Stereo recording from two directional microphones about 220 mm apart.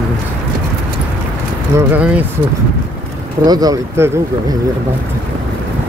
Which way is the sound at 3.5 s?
15° right (ahead or behind).